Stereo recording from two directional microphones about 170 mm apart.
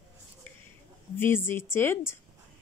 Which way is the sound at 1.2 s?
15° left (ahead or behind).